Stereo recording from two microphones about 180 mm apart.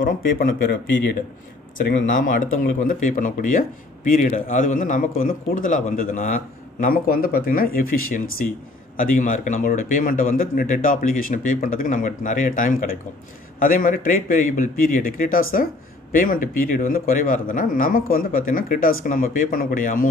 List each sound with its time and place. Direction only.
0.0 s a man's voice: 50° left (ahead or behind)
2.9 s a man's voice: 50° left (ahead or behind)